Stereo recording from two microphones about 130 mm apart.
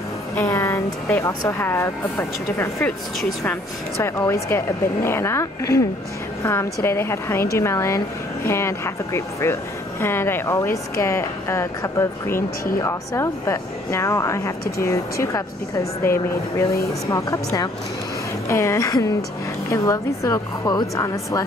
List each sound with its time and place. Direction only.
0.4 s speech: 20° left (ahead or behind)
4.0 s speech: 20° left (ahead or behind)